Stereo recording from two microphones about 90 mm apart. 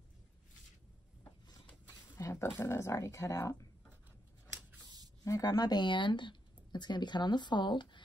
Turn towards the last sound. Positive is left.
turn(degrees=60)  # may be behind; listen again after turning